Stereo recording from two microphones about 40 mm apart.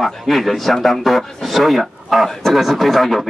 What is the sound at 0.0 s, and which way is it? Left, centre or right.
A man's voice, centre.